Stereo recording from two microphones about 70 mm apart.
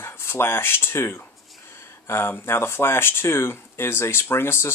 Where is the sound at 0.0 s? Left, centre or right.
Left.